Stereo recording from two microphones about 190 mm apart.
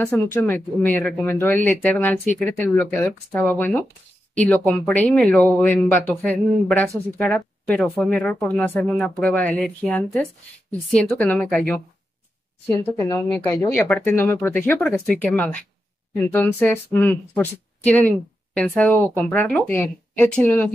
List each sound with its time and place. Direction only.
0.0 s a woman's voice: 10° left (ahead or behind)
12.6 s speech: 15° left (ahead or behind)